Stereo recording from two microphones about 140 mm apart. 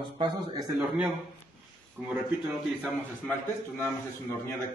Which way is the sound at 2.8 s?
15° left (ahead or behind).